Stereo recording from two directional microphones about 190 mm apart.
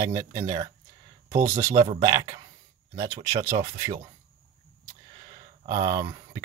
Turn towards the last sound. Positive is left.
turn(degrees=-20)  # may be behind; listen again after turning